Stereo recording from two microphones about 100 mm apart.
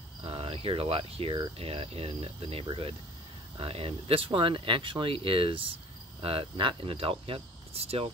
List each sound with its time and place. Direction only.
0.2 s speech: 65° right (ahead or behind); by 8.1 s 90° right